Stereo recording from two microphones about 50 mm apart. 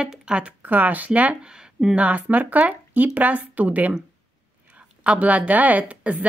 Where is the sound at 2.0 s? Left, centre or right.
Right.